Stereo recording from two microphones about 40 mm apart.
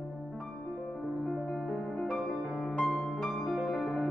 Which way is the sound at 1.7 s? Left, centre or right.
Centre.